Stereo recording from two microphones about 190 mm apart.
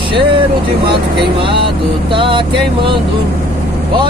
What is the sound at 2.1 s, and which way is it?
Speech, 25° right (ahead or behind).